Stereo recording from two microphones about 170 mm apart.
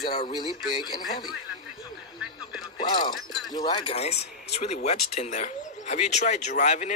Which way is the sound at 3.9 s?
40° left (ahead or behind).